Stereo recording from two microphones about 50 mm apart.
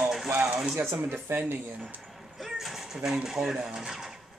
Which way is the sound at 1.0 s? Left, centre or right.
Right.